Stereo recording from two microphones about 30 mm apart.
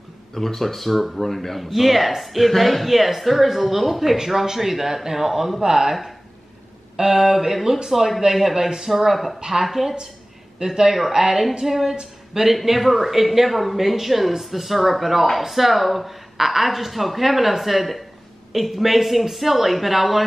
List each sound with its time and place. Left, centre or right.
0.3 s a man's voice: centre
7.0 s a man's voice: centre
8.9 s a man's voice: centre
11.9 s speech: right
12.6 s speech: centre